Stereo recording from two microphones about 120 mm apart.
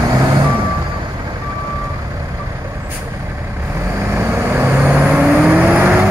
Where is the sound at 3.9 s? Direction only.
25° right (ahead or behind).